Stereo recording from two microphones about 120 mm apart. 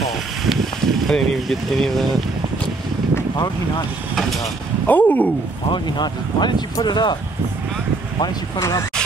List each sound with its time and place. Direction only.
0.5 s a sound: centre (ahead or behind)
4.8 s speech: 15° left (ahead or behind)
5.7 s speech: 40° left (ahead or behind)
8.2 s speech: 25° left (ahead or behind)